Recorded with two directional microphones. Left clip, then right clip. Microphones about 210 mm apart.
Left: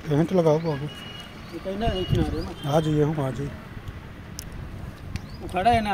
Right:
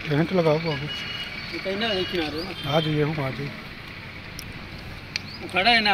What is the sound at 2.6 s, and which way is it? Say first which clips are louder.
Speech: left 1 dB; 25° left (ahead or behind).